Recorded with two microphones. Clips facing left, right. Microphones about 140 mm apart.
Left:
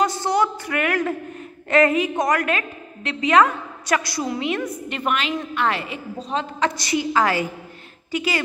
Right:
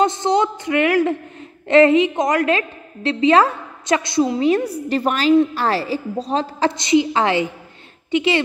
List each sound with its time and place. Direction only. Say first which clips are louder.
0.0 s a sound: right 3 dB; 20° right (ahead or behind)
1.7 s a woman's voice: right 6 dB; 25° right (ahead or behind)
4.4 s a woman's voice: right 7 dB; 35° right (ahead or behind)
6.7 s a woman's voice: right 6 dB; 20° right (ahead or behind)